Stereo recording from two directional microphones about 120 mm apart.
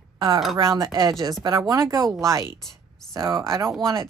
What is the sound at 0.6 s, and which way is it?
Speech, 30° right (ahead or behind).